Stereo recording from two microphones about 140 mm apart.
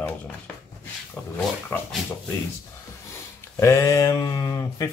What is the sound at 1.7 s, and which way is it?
Speech, 10° left (ahead or behind).